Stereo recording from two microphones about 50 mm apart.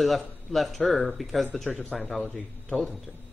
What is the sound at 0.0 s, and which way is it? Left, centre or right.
Speech, centre.